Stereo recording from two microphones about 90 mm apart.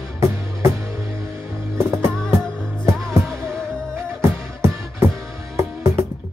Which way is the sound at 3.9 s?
30° right (ahead or behind).